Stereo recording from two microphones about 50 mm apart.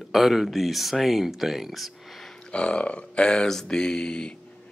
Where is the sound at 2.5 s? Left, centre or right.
Left.